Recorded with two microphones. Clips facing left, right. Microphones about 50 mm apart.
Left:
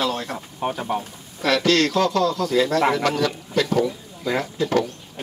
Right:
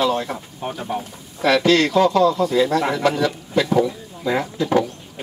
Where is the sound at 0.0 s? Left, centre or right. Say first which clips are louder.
Right 4 dB; centre.